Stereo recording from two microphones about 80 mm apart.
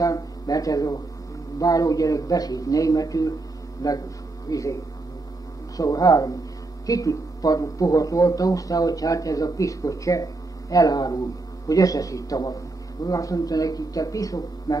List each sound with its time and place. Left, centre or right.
0.0 s a sound: left
1.6 s speech: left
5.8 s speech: left